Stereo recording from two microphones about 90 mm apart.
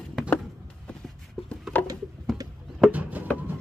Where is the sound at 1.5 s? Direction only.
15° left (ahead or behind).